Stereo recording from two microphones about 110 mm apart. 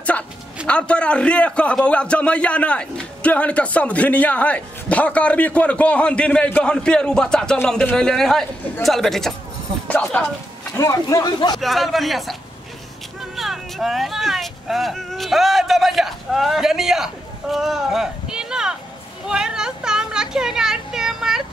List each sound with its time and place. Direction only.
0.7 s a man's voice: 10° left (ahead or behind)
9.8 s speech: 15° left (ahead or behind)
10.8 s speech: 30° left (ahead or behind)
11.6 s a man's voice: centre (ahead or behind)
13.4 s a child's voice: 5° right (ahead or behind)